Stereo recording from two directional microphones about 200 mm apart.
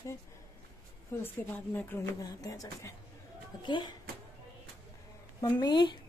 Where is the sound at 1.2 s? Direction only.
10° left (ahead or behind).